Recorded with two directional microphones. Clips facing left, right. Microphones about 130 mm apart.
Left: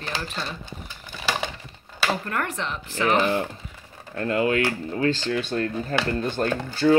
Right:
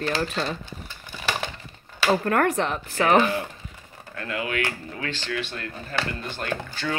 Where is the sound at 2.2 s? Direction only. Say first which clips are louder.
Right 7 dB; 50° right (ahead or behind).